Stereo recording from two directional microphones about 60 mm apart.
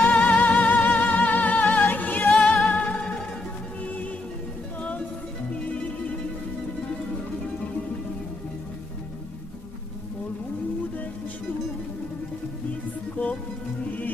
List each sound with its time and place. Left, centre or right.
0.0 s music: centre
0.4 s music: centre
1.3 s music: left
2.3 s music: centre
13.2 s music: left